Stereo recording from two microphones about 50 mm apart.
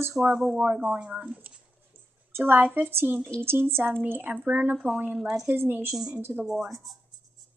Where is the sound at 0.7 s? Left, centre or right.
Right.